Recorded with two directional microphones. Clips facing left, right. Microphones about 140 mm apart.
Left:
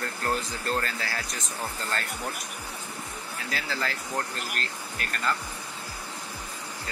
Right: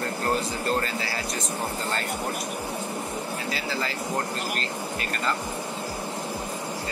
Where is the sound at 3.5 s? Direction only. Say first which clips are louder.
Left 1 dB; centre (ahead or behind).